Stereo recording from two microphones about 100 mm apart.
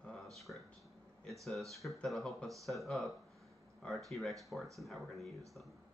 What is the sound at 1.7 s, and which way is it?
Speech, centre (ahead or behind).